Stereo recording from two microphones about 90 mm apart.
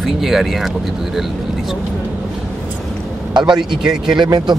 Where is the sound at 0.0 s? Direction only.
Centre (ahead or behind).